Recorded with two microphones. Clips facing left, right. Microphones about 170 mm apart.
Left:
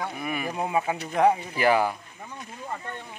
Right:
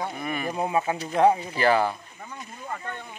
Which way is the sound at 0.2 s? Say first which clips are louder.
Even; 10° left (ahead or behind).